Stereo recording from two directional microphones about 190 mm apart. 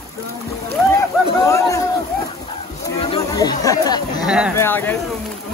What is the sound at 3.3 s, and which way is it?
Chatter, 20° left (ahead or behind).